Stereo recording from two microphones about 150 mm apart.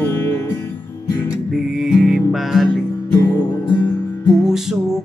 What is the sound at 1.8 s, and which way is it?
Music, 5° right (ahead or behind).